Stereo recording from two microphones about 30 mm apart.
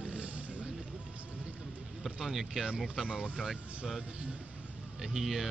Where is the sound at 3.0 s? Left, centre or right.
Right.